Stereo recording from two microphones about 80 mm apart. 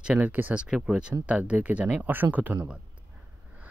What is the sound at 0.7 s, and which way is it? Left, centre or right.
Speech, centre.